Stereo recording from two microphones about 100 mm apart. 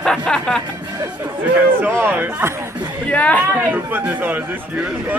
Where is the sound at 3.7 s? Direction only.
20° right (ahead or behind).